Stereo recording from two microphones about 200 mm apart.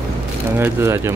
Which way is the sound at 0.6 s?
15° right (ahead or behind).